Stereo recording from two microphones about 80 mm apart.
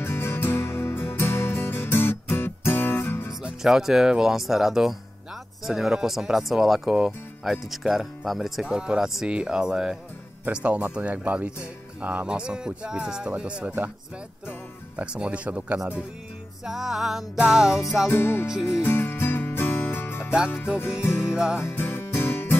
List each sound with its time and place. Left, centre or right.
0.0 s music: left
3.4 s speech: centre
15.0 s speech: centre
16.6 s music: centre
17.4 s speech: centre
18.1 s music: left
18.5 s music: centre
18.8 s music: left
21.3 s music: centre
21.5 s music: left